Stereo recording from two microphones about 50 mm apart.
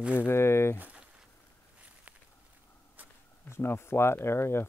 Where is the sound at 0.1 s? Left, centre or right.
Left.